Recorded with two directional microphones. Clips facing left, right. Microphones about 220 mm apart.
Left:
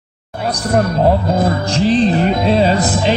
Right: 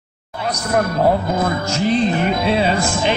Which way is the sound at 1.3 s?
35° left (ahead or behind).